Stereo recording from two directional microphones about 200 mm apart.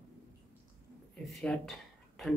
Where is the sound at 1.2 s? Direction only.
Centre (ahead or behind).